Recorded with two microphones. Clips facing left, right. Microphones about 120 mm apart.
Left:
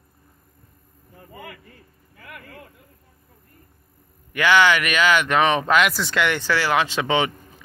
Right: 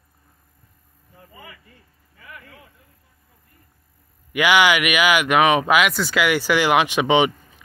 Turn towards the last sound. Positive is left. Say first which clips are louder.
# right 4 dB
turn(degrees=-20)  # may be behind; listen again after turning